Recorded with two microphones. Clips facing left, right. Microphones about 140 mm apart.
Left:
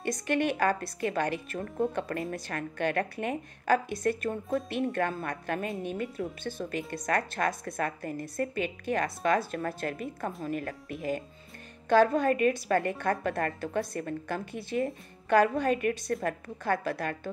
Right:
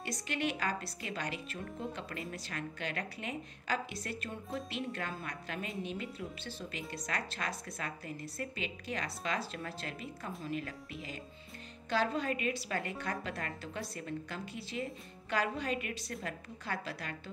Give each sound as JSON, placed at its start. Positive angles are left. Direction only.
{"t": 0.0, "sound": "a woman's voice", "side_deg": 55}